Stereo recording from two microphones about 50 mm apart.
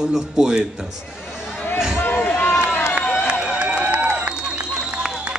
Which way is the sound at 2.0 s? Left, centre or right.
Left.